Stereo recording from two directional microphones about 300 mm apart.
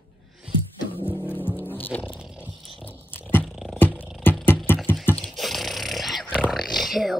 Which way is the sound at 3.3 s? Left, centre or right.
Centre.